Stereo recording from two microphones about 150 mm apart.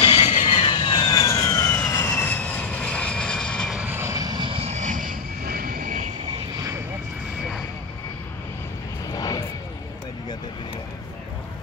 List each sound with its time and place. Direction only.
0.0 s vehicle: 30° left (ahead or behind); by 3.7 s 5° left (ahead or behind)
3.7 s vehicle: 10° right (ahead or behind); by 6.0 s 65° right (ahead or behind)
9.1 s vehicle: 25° left (ahead or behind)